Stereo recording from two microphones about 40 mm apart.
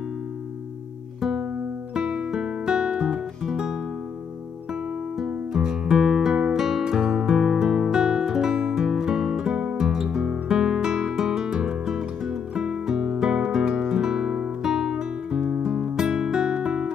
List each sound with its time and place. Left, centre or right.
2.0 s music: centre
5.2 s music: centre
6.5 s music: centre; by 16.0 s right
16.1 s music: centre
16.5 s music: right